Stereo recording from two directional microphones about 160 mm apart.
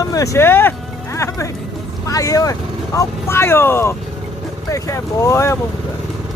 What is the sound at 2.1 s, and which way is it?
Speech, 20° left (ahead or behind).